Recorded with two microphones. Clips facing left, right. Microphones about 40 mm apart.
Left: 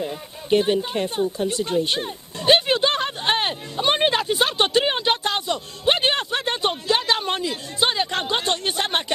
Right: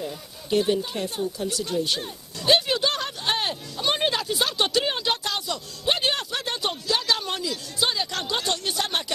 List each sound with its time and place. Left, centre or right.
0.0 s speech: left